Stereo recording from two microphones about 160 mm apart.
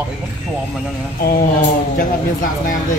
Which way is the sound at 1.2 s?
65° left (ahead or behind).